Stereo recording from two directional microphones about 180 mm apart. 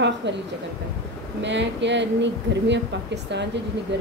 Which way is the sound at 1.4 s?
80° right.